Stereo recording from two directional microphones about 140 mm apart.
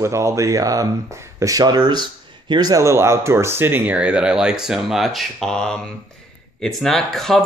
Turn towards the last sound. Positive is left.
turn(degrees=5)  # may be behind; listen again after turning